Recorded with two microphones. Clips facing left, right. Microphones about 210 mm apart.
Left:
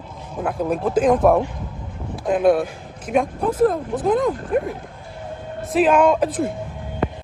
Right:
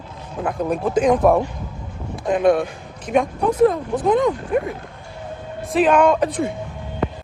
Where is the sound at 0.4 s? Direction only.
Centre (ahead or behind).